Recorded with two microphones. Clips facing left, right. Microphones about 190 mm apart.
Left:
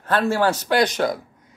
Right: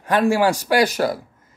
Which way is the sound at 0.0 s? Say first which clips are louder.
Right 3 dB; 10° right (ahead or behind).